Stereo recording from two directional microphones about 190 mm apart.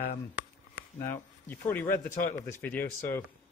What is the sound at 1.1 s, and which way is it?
Speech, 10° left (ahead or behind).